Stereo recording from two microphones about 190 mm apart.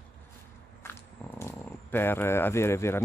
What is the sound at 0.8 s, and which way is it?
Speech, 10° left (ahead or behind).